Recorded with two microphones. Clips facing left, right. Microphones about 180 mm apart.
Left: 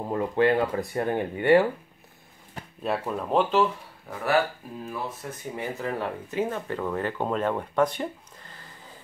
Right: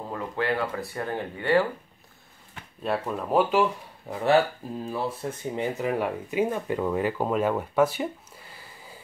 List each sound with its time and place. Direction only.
0.1 s speech: 20° left (ahead or behind)
2.8 s speech: centre (ahead or behind)
4.1 s speech: 25° right (ahead or behind); by 8.9 s 10° right (ahead or behind)